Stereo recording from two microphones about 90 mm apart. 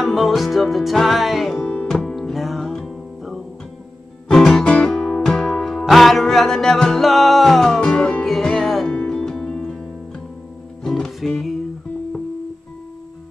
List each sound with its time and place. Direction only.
0.0 s music: centre (ahead or behind)
1.6 s music: 15° left (ahead or behind)
1.9 s music: 5° left (ahead or behind)